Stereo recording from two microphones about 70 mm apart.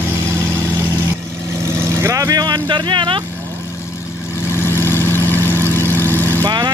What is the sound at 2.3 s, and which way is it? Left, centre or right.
Speech, right.